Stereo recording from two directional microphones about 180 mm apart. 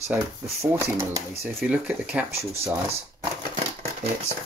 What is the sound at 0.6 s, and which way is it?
Speech, 15° right (ahead or behind).